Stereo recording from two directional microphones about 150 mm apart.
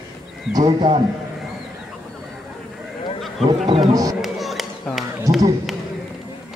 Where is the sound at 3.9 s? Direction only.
25° right (ahead or behind).